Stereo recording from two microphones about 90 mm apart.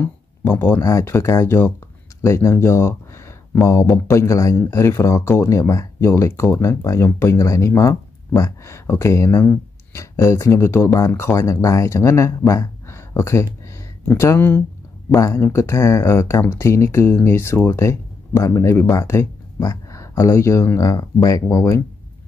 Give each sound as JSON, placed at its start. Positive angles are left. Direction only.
{"t": 0.0, "sound": "speech", "side_deg": 30}
{"t": 13.7, "sound": "a sound", "side_deg": 30}
{"t": 15.1, "sound": "speech", "side_deg": 35}